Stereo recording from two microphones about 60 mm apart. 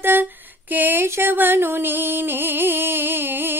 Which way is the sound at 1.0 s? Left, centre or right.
Right.